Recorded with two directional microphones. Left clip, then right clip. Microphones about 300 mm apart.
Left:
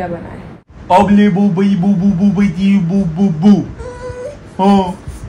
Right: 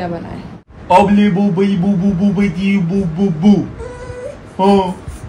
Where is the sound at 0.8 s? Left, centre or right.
Centre.